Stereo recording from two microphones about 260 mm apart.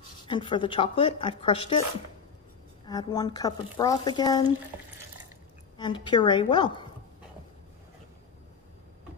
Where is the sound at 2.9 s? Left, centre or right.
Centre.